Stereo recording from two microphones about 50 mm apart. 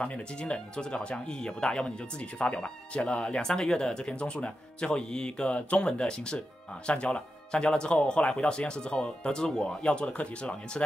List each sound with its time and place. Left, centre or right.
0.0 s speech: left